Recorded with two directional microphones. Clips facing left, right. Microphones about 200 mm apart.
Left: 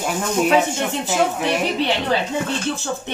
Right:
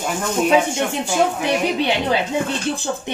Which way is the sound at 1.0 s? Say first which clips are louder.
Even; 10° right (ahead or behind).